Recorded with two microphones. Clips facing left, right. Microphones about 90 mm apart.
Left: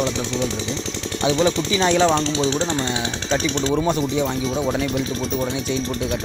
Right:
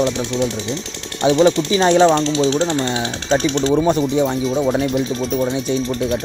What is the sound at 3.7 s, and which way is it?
Speech, 15° right (ahead or behind).